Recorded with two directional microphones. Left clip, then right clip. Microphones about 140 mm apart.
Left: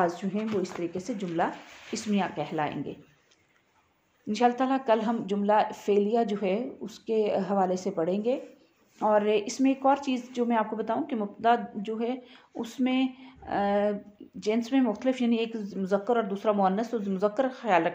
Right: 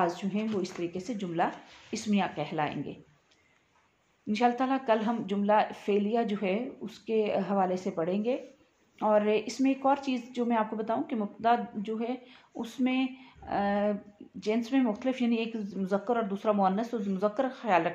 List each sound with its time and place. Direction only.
0.0 s speech: 40° left (ahead or behind)
4.3 s speech: 35° left (ahead or behind)